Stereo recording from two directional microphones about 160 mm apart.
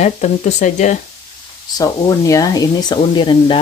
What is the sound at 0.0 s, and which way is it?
Speech, 45° left (ahead or behind).